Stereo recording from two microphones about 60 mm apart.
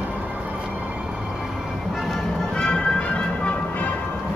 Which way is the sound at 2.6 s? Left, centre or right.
Centre.